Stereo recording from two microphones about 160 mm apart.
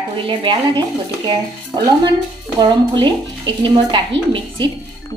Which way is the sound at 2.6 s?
30° right (ahead or behind).